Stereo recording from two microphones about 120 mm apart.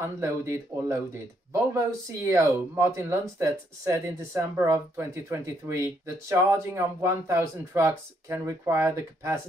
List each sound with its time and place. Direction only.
0.0 s speech: 25° right (ahead or behind)